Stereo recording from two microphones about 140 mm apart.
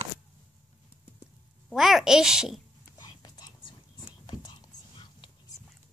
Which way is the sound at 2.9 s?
30° left (ahead or behind).